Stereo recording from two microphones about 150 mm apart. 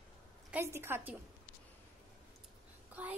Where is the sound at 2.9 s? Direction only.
10° right (ahead or behind).